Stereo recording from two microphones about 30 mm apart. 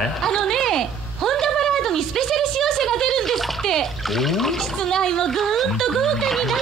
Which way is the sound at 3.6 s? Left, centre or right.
Centre.